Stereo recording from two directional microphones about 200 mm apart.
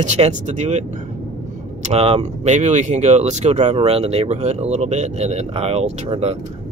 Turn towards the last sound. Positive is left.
turn(degrees=-30)  # may be behind; listen again after turning